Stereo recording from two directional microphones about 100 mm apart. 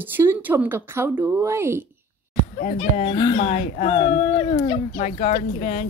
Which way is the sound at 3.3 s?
85° left.